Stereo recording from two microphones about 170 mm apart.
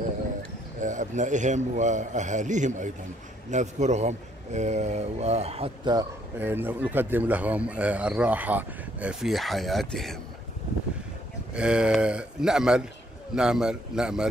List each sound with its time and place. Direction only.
0.7 s a man's voice: 50° right (ahead or behind)
5.9 s speech: 15° right (ahead or behind)
11.5 s speech: 5° right (ahead or behind)